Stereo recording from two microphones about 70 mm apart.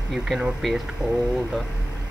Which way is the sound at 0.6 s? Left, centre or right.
Centre.